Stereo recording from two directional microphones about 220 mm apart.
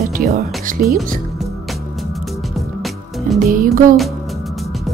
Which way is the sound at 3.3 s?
40° right (ahead or behind).